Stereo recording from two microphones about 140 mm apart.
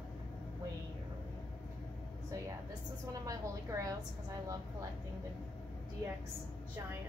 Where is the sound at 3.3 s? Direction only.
25° right (ahead or behind).